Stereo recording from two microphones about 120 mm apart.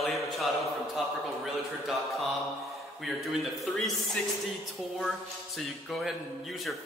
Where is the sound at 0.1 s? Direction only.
Centre (ahead or behind).